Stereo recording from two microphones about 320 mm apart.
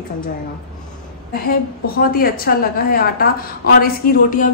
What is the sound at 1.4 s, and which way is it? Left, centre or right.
A woman's voice, left.